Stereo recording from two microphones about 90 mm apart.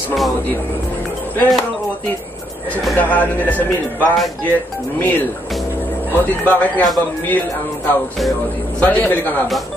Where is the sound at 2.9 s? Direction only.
20° left (ahead or behind).